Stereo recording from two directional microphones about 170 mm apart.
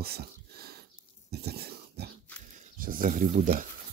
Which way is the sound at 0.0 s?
65° right (ahead or behind).